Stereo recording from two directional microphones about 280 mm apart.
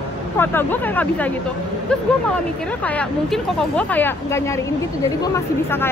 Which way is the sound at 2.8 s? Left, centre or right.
Centre.